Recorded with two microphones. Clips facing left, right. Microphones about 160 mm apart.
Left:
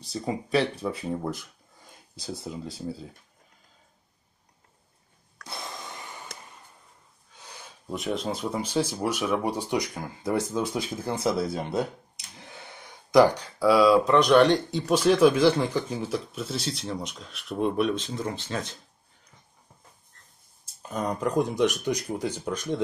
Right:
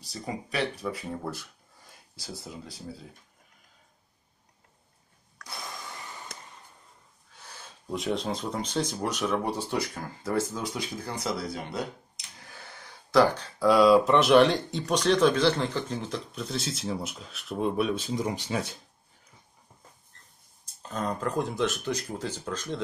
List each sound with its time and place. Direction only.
0.0 s speech: 25° left (ahead or behind)
5.4 s breathing: 25° left (ahead or behind)
7.3 s a sound: 15° left (ahead or behind)
7.9 s speech: centre (ahead or behind)
20.8 s speech: 15° left (ahead or behind)